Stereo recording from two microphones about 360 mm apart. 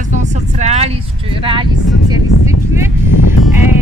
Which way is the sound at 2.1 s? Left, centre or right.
Centre.